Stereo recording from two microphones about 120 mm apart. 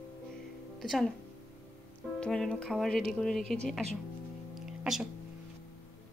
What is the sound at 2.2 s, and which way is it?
Speech, 5° left (ahead or behind).